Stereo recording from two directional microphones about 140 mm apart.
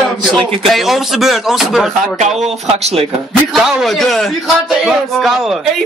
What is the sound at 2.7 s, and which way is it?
Speech, 50° right (ahead or behind).